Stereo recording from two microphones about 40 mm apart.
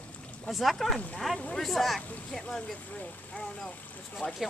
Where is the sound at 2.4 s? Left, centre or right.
Left.